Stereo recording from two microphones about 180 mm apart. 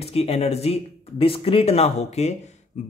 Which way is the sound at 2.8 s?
40° left (ahead or behind).